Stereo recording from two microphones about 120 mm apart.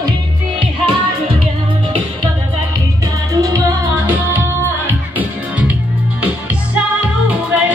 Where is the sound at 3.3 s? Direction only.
30° right (ahead or behind).